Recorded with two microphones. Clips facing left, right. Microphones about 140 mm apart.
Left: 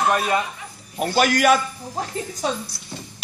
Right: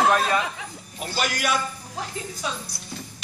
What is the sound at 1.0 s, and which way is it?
Speech, 50° left (ahead or behind).